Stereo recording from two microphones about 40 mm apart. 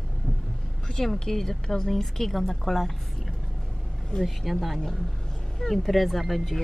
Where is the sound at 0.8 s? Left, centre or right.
Centre.